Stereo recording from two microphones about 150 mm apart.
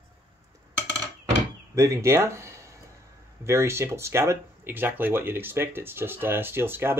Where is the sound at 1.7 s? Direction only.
20° right (ahead or behind).